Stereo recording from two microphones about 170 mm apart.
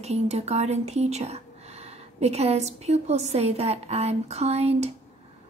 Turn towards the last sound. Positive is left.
turn(degrees=-40)  # may be behind; listen again after turning